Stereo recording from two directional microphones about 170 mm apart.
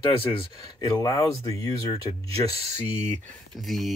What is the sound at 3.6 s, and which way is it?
Speech, centre (ahead or behind).